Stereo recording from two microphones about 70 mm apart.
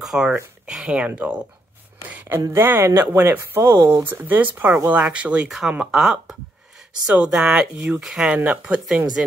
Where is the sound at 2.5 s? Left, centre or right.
Right.